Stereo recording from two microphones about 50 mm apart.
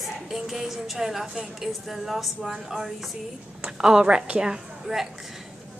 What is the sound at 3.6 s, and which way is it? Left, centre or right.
A woman's voice, centre.